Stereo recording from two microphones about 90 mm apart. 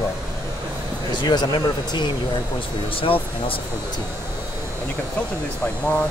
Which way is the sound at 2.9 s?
90° left.